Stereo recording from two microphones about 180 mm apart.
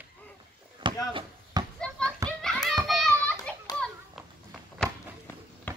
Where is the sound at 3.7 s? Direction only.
20° left (ahead or behind).